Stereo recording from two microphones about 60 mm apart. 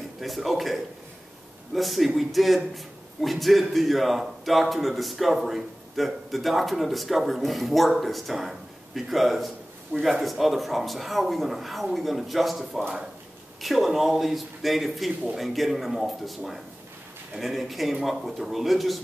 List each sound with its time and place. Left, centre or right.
0.2 s speech: centre
9.9 s speech: right
10.2 s speech: centre